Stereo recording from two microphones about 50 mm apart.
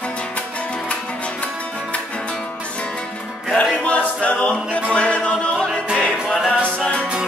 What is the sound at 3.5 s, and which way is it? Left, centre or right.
Music, left.